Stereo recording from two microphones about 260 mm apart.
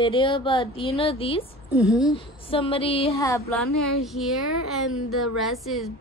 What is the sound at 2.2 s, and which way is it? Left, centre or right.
Speech, left.